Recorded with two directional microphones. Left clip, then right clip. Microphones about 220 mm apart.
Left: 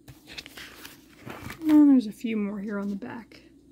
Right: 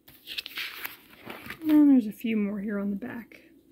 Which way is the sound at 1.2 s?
35° left (ahead or behind).